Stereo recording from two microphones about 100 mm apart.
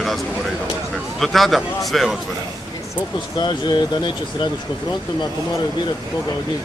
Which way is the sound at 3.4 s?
50° left (ahead or behind).